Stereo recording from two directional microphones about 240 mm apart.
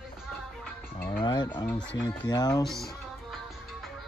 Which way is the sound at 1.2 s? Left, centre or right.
Centre.